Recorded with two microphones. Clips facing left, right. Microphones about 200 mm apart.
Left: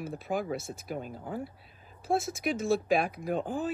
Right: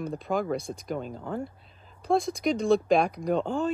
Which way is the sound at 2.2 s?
5° left (ahead or behind).